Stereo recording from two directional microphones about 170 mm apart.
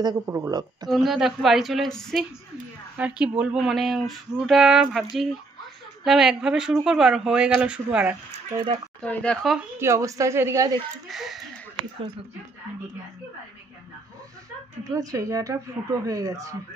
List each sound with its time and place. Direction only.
0.0 s speech: 20° right (ahead or behind)
0.8 s speech: centre (ahead or behind)
9.0 s speech: 5° left (ahead or behind)
9.8 s a woman's voice: 15° right (ahead or behind)
11.1 s speech: centre (ahead or behind)
14.9 s speech: 20° right (ahead or behind)